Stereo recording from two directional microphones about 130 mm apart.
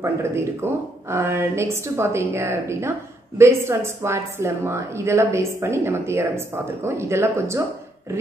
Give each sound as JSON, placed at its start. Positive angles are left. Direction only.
{"t": 0.0, "sound": "a woman's voice", "side_deg": -20}